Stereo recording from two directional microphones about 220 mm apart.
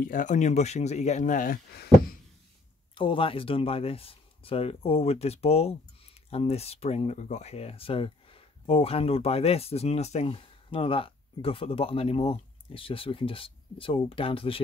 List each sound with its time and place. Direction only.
0.0 s speech: 35° left (ahead or behind)
2.9 s speech: 25° left (ahead or behind)